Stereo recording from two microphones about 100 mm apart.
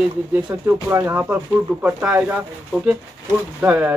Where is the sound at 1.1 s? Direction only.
15° right (ahead or behind).